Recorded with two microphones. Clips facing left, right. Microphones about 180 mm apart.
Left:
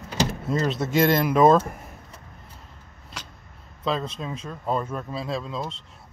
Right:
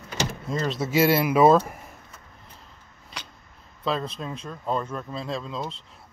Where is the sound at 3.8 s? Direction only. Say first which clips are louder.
Left 1 dB; centre (ahead or behind).